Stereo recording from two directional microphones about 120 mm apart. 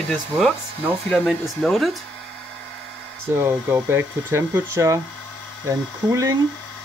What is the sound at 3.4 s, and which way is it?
Speech, 15° right (ahead or behind).